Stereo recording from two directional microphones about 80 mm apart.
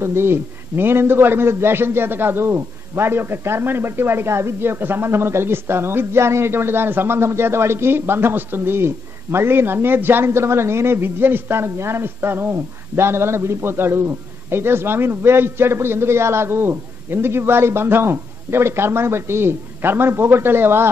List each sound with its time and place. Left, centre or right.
0.0 s a man's voice: right